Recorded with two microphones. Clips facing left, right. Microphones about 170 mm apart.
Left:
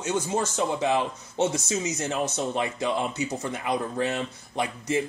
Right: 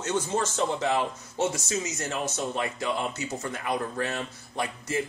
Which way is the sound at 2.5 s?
20° left (ahead or behind).